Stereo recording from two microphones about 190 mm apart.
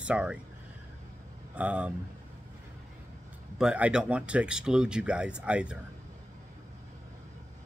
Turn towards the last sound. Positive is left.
turn(degrees=-5)  # may be behind; listen again after turning